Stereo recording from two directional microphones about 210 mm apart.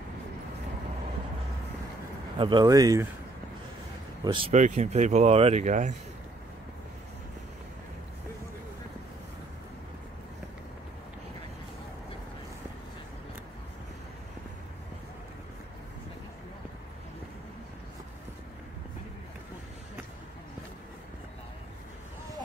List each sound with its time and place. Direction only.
2.3 s speech: 20° right (ahead or behind)
4.2 s speech: 25° right (ahead or behind)